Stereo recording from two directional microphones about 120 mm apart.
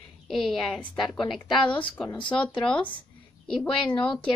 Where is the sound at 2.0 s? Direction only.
40° left (ahead or behind).